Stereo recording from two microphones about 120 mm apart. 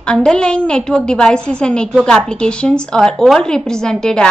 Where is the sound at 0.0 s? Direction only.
5° left (ahead or behind).